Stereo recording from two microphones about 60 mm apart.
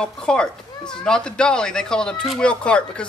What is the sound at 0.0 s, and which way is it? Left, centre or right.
Speech, centre.